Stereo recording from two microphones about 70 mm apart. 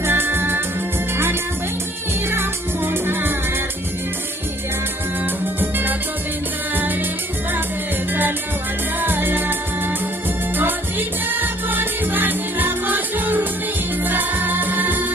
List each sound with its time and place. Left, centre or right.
0.0 s music: right
2.3 s music: right
5.6 s music: right
9.0 s music: right